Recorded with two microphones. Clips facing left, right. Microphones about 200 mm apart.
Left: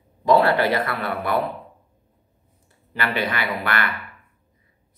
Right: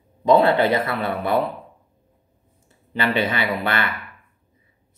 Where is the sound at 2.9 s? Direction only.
20° right (ahead or behind).